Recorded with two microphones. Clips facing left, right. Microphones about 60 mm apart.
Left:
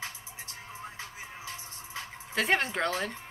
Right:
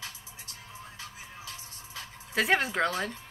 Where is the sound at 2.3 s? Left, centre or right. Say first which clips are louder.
Right 1 dB; centre.